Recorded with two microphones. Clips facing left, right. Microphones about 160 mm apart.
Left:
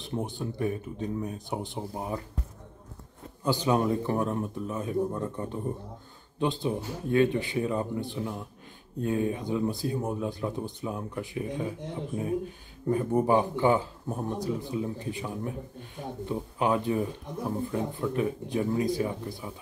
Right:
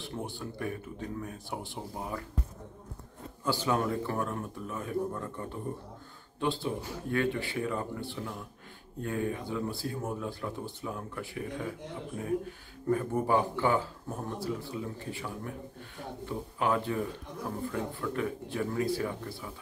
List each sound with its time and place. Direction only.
0.0 s speech: 20° left (ahead or behind)
3.4 s speech: 20° left (ahead or behind)